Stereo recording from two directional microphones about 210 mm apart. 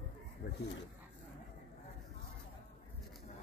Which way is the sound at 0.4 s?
50° left (ahead or behind).